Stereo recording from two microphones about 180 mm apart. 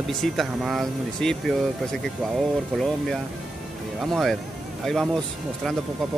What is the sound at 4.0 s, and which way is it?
A man's voice, centre (ahead or behind).